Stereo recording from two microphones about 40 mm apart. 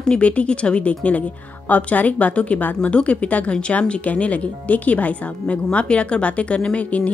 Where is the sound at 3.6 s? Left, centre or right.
Left.